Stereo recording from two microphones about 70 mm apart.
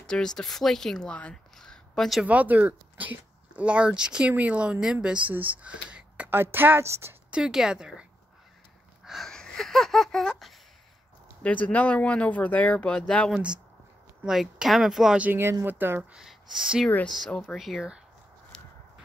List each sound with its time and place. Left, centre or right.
0.1 s speech: centre
1.3 s a sound: centre
2.2 s speech: right
6.3 s a woman's voice: right
7.2 s a woman's voice: centre
9.0 s a sound: centre
9.3 s a sound: centre
11.4 s speech: left
13.3 s speech: centre
15.6 s a woman's voice: right
16.0 s speech: centre
17.3 s speech: centre
18.5 s walk: centre